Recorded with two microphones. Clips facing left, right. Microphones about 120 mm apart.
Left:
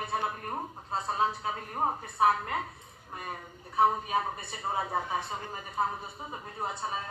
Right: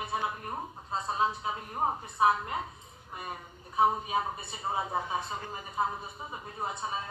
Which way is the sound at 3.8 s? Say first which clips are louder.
Left 1 dB; 20° right (ahead or behind).